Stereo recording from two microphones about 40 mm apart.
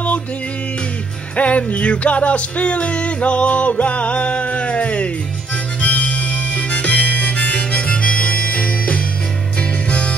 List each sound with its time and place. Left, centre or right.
1.3 s music: left
5.8 s harmonica: left
9.6 s music: left